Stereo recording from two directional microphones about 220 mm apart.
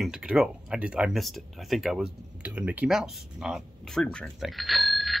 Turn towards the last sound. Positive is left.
turn(degrees=0)  # may be behind; listen again after turning